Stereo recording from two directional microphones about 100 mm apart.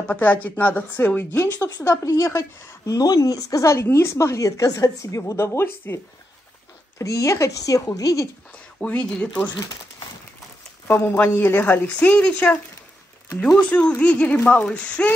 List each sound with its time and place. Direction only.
0.1 s a woman's voice: 15° left (ahead or behind)
7.0 s speech: 30° left (ahead or behind)
8.7 s speech: 10° left (ahead or behind)
10.9 s a woman's voice: 20° left (ahead or behind)